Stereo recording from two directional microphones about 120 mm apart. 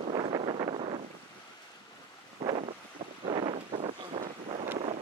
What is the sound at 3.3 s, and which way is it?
Wind noise, 45° right (ahead or behind).